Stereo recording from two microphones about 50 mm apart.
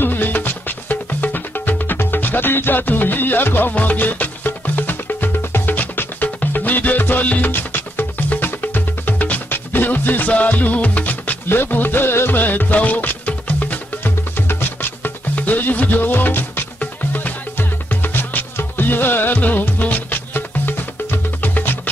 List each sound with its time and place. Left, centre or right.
0.0 s music: left
11.4 s music: left